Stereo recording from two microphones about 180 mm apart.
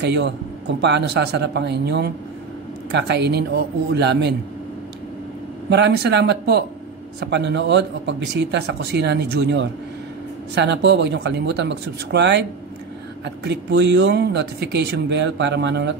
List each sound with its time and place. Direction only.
0.0 s speech: 70° right (ahead or behind)
5.7 s speech: 70° right (ahead or behind)